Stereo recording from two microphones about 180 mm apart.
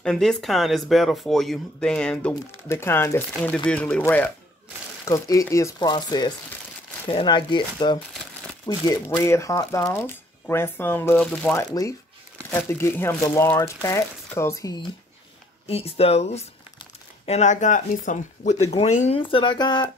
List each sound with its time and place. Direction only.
0.0 s speech: 5° left (ahead or behind); by 14.9 s 20° left (ahead or behind)
15.7 s speech: 35° left (ahead or behind)